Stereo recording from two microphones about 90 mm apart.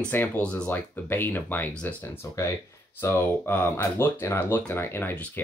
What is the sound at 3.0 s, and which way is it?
Speech, 25° left (ahead or behind).